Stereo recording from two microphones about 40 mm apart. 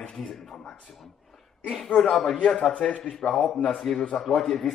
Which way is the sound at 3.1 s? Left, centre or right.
Centre.